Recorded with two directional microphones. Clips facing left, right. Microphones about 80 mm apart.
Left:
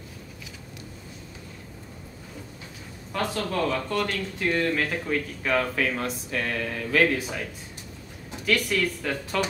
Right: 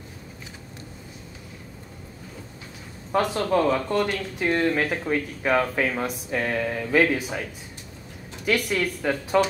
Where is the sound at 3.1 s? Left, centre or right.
Right.